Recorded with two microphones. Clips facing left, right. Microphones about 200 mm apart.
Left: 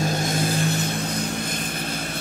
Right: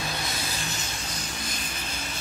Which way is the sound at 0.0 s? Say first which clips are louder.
Left 10 dB; 45° left (ahead or behind).